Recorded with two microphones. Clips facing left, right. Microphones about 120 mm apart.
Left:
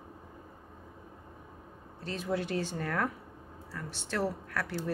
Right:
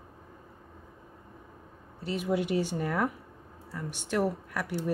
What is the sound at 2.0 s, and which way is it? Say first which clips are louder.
Speech: right 4 dB; 15° right (ahead or behind).